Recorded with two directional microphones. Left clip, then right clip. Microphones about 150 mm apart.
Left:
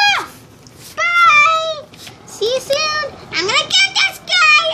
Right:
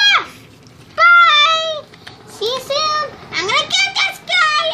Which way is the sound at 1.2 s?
10° right (ahead or behind).